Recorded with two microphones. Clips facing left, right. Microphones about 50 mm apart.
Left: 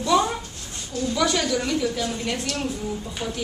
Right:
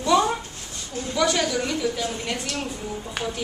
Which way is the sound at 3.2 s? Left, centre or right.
Right.